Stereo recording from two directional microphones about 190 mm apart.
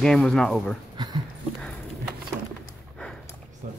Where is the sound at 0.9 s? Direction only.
20° right (ahead or behind).